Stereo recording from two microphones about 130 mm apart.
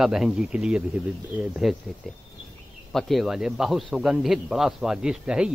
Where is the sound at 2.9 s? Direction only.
Centre (ahead or behind).